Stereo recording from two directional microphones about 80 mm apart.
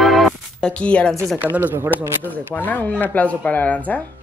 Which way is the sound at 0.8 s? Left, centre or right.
Centre.